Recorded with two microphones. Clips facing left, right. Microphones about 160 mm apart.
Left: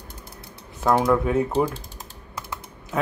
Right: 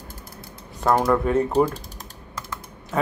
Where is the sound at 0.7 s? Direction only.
Centre (ahead or behind).